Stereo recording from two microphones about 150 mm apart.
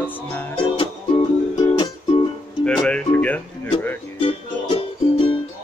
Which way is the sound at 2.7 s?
5° left (ahead or behind).